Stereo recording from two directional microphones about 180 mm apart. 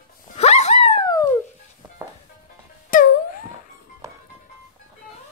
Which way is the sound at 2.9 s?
50° left (ahead or behind).